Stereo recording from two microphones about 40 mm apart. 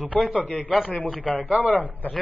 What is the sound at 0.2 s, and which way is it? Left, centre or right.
A man's voice, left.